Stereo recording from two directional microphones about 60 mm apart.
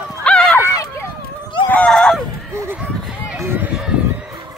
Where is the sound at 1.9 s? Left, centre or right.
Centre.